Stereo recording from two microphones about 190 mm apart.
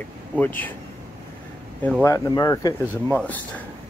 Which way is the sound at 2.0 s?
15° left (ahead or behind).